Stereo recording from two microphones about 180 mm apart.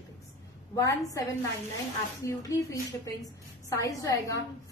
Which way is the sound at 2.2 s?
20° left (ahead or behind).